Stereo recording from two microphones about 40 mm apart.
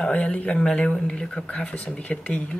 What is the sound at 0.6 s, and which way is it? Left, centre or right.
Speech, left.